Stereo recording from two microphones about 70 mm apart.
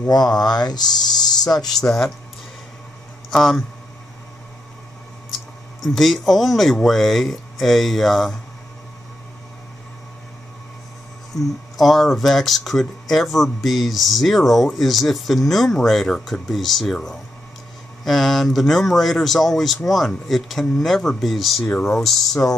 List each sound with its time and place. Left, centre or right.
0.1 s speech: left
3.3 s speech: centre
5.9 s speech: centre
11.3 s speech: centre
22.4 s speech: left